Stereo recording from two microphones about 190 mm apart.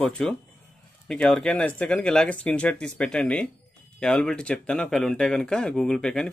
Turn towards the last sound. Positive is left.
turn(degrees=5)  # may be behind; listen again after turning